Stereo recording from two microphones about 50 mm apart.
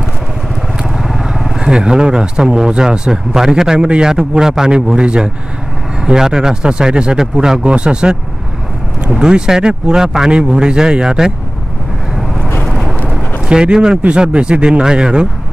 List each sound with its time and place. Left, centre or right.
0.9 s speech: centre
12.6 s horse: centre
13.5 s speech: centre